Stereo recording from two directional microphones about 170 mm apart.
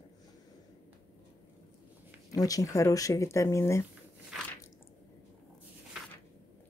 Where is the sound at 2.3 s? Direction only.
20° left (ahead or behind).